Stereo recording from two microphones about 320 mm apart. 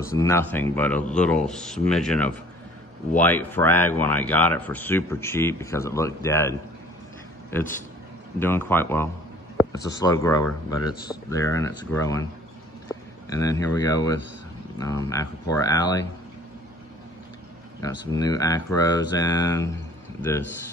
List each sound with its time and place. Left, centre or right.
0.1 s speech: centre
7.5 s speech: centre
17.7 s a man's voice: centre